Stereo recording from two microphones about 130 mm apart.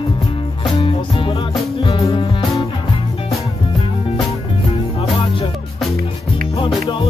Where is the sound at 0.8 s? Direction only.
40° left (ahead or behind).